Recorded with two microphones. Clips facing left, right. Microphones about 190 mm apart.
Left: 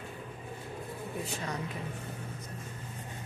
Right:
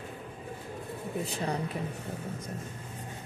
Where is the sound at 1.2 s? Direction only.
35° right (ahead or behind).